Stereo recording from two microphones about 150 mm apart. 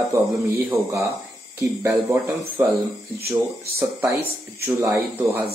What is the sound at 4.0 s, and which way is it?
Speech, 10° right (ahead or behind).